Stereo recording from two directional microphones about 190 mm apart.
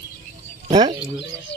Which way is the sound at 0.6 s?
20° right (ahead or behind).